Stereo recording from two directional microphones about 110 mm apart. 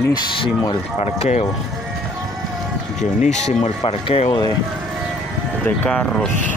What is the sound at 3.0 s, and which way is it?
Speech, 90° left.